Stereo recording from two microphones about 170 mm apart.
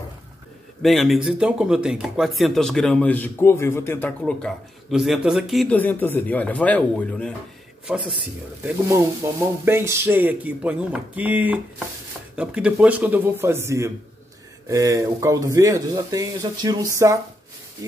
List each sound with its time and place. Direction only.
0.8 s speech: centre (ahead or behind)
5.8 s speech: 10° left (ahead or behind)
8.6 s speech: 20° right (ahead or behind)